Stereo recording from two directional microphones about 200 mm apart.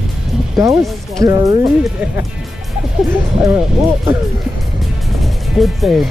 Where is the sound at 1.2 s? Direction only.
15° right (ahead or behind).